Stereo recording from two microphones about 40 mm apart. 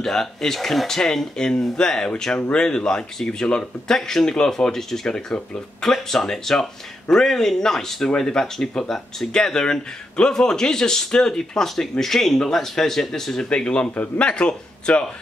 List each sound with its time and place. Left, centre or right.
0.0 s speech: centre
13.5 s speech: left